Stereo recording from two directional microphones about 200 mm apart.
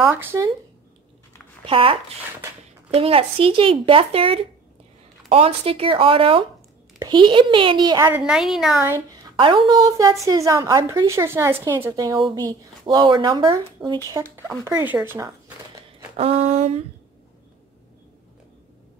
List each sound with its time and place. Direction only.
0.0 s a woman's voice: 10° right (ahead or behind)
1.7 s speech: 25° right (ahead or behind)
8.1 s a woman's voice: 5° right (ahead or behind)
8.8 s a woman's voice: 15° right (ahead or behind)
13.8 s a woman's voice: 5° right (ahead or behind)
16.2 s speech: 30° right (ahead or behind)